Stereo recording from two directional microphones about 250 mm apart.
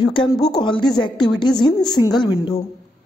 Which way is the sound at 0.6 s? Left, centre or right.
Centre.